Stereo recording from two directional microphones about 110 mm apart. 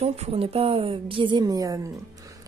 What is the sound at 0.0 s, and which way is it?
A woman's voice, 70° right (ahead or behind).